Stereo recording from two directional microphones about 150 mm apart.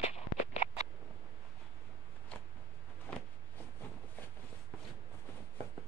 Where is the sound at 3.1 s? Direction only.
10° left (ahead or behind).